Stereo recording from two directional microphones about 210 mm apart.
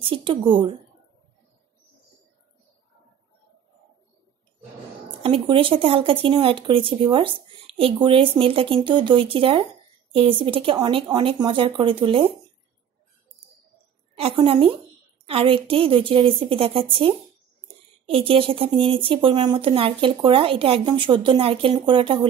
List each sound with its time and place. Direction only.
0.0 s speech: 25° right (ahead or behind)
5.2 s speech: 25° right (ahead or behind)
14.1 s speech: 25° right (ahead or behind)